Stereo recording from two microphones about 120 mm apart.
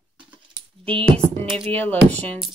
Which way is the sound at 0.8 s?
50° right (ahead or behind).